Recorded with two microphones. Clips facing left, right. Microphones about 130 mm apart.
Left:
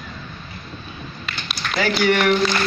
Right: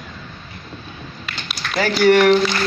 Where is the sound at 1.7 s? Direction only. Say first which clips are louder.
Right 5 dB; 45° right (ahead or behind).